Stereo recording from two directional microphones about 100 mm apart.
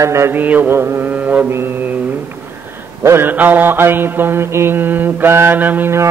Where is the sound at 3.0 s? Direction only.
20° right (ahead or behind).